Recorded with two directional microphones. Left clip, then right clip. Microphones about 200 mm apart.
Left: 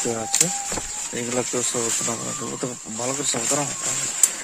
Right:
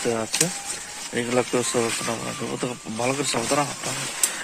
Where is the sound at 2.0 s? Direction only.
30° left (ahead or behind).